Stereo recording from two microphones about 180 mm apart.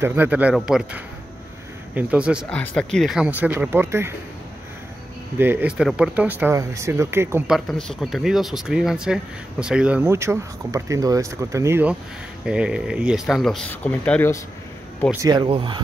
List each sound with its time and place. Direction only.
0.0 s speech: 10° right (ahead or behind)
2.5 s speech: 5° left (ahead or behind); by 4.1 s 15° right (ahead or behind)
5.4 s speech: 10° right (ahead or behind)
7.5 s speech: centre (ahead or behind)
15.2 s speech: 25° right (ahead or behind)